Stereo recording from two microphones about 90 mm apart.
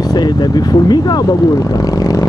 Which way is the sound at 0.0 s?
50° left (ahead or behind).